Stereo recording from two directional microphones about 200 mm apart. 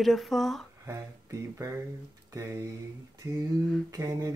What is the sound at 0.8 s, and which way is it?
Speech, 15° right (ahead or behind).